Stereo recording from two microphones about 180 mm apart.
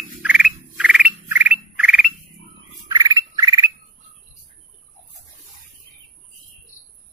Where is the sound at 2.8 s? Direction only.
20° right (ahead or behind).